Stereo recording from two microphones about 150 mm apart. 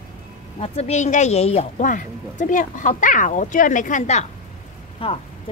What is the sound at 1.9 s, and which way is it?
Speech, 60° left (ahead or behind).